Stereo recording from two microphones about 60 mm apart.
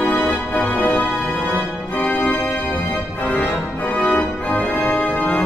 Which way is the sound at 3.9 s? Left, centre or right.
Left.